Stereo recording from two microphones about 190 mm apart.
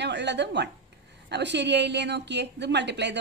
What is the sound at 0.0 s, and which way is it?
A woman's voice, 65° right (ahead or behind).